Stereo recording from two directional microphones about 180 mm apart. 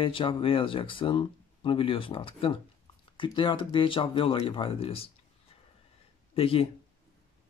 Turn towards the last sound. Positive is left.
turn(degrees=30)  # may be behind; listen again after turning